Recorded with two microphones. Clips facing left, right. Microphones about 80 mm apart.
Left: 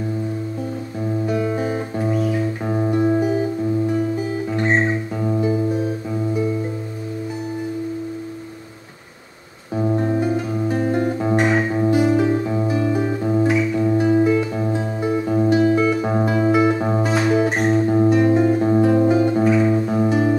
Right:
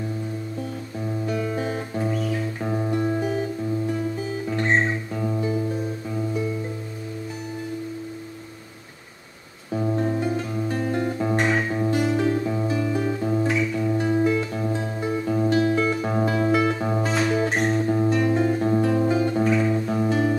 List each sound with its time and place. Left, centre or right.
1.2 s music: centre
4.5 s music: centre
9.8 s music: left
10.3 s guitar: centre